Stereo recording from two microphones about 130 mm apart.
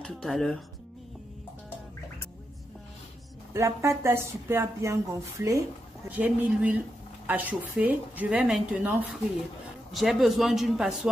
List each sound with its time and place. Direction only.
0.0 s speech: 5° left (ahead or behind)
3.5 s speech: 20° right (ahead or behind)
6.0 s speech: 10° right (ahead or behind)
9.9 s speech: centre (ahead or behind)